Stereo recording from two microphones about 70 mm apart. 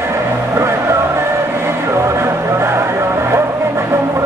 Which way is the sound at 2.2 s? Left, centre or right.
Right.